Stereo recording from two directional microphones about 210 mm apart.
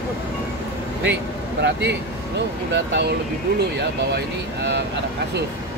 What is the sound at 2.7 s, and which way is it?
Speech, 55° right (ahead or behind).